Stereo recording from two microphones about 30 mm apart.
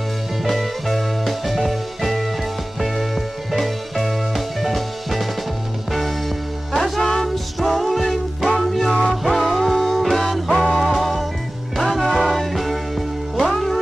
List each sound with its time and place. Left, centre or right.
0.5 s music: centre
3.5 s music: centre